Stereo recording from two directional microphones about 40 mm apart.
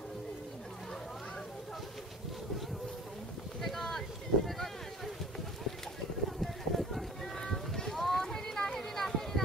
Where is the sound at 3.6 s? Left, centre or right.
Centre.